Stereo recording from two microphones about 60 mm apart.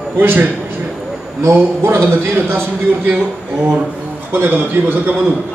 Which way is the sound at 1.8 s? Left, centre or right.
Right.